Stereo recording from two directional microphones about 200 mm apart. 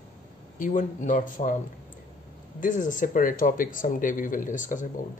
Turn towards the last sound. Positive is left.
turn(degrees=40)  # may be behind; listen again after turning